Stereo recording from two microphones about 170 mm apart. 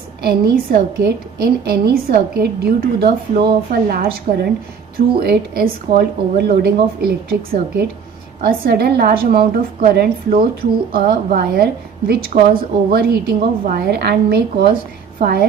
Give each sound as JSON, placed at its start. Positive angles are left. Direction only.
{"t": 0.2, "sound": "a woman's voice", "side_deg": -65}
{"t": 15.1, "sound": "a woman's voice", "side_deg": -60}